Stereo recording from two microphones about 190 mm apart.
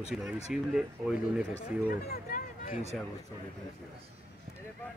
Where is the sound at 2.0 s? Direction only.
50° left (ahead or behind).